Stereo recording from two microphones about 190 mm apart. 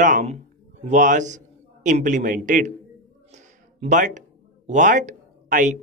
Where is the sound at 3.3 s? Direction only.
40° right (ahead or behind).